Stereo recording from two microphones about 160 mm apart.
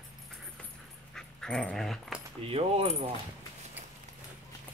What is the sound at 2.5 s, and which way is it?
Keys jangling, 35° right (ahead or behind).